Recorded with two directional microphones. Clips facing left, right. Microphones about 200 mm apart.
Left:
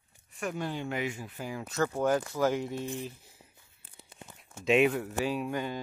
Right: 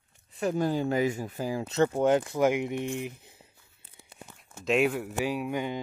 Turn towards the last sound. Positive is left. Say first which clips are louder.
# right 2 dB
turn(degrees=-15)  # may be behind; listen again after turning